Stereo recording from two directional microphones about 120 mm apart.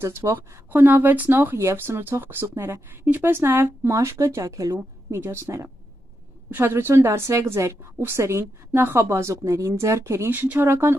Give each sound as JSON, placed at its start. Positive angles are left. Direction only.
{"t": 0.0, "sound": "speech", "side_deg": -20}